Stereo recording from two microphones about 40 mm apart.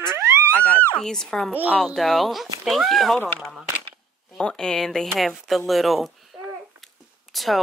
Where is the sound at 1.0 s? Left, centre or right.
Centre.